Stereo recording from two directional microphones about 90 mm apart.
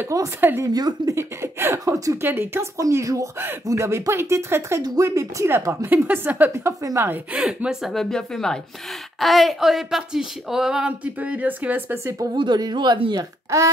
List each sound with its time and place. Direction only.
0.4 s a woman's voice: 25° right (ahead or behind)
0.7 s speech: 50° right (ahead or behind)
1.1 s a woman's voice: 30° right (ahead or behind)
7.3 s speech: 10° right (ahead or behind)
12.4 s a woman's voice: 50° right (ahead or behind)